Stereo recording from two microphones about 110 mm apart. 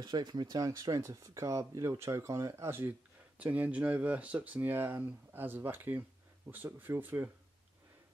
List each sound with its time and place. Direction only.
0.0 s speech: 40° right (ahead or behind); by 7.2 s 20° right (ahead or behind)